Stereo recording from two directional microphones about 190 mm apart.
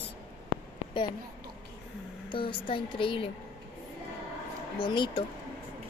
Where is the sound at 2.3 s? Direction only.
25° left (ahead or behind).